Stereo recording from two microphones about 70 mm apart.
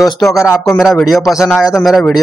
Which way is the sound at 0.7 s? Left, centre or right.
Centre.